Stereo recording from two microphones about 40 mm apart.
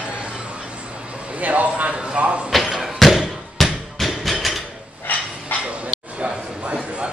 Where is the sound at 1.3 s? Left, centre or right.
Right.